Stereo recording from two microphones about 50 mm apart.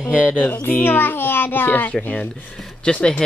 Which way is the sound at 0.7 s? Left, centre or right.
Left.